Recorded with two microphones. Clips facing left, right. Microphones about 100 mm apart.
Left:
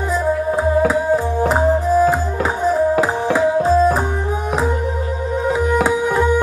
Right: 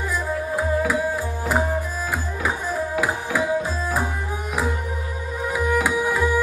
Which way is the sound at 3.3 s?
25° left (ahead or behind).